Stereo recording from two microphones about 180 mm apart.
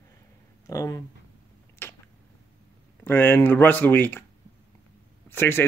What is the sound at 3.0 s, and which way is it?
Speech, 10° left (ahead or behind).